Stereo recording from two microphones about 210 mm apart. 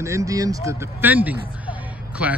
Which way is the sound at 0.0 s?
15° right (ahead or behind).